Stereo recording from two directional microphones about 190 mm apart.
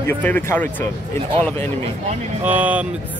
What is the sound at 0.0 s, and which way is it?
Speech, 10° left (ahead or behind).